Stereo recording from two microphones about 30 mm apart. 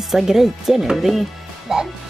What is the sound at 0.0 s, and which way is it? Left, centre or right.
Speech, centre.